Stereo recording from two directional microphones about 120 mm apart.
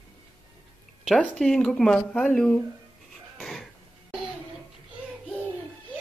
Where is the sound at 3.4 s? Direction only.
Centre (ahead or behind).